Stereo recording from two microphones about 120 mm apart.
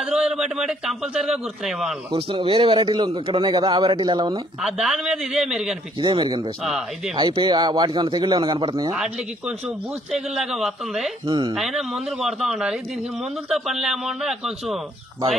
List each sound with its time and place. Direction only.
0.0 s a man's voice: 5° right (ahead or behind)
2.1 s a man's voice: 45° right (ahead or behind)
4.6 s a man's voice: 5° right (ahead or behind)
6.0 s speech: 40° right (ahead or behind)
10.1 s a man's voice: 5° right (ahead or behind)
11.2 s speech: 40° right (ahead or behind)
11.5 s a man's voice: 5° right (ahead or behind)